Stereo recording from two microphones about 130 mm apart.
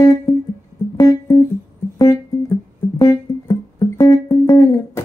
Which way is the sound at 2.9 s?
25° left (ahead or behind).